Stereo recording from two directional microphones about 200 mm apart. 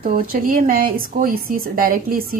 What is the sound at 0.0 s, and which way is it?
Speech, 45° right (ahead or behind).